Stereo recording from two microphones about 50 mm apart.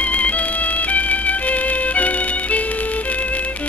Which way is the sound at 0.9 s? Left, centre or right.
Left.